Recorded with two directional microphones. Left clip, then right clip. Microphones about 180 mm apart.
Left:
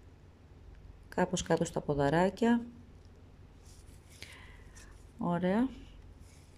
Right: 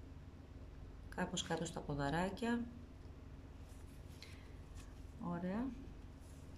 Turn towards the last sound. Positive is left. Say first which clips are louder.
# left 13 dB
turn(degrees=50)  # may be behind; listen again after turning